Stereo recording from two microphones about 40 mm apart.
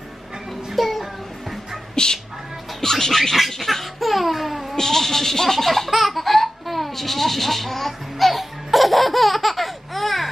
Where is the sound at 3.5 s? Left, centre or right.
Centre.